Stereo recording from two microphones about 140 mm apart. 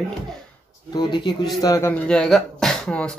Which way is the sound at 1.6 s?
20° left (ahead or behind).